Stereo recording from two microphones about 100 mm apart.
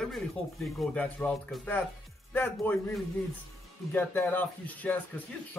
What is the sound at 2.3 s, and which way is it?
A man's voice, 20° left (ahead or behind).